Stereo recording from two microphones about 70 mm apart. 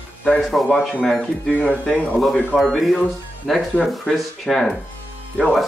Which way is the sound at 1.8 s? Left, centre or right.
Centre.